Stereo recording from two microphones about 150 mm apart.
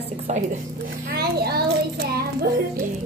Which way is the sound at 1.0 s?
90° right.